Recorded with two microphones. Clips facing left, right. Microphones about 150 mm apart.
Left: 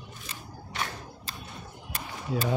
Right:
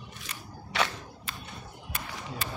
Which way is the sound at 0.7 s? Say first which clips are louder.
Right 6 dB; 85° right.